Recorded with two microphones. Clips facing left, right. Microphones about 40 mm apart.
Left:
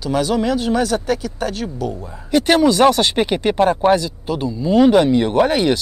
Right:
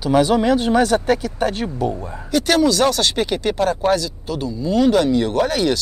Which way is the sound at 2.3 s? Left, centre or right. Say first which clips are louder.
Left 2 dB; centre.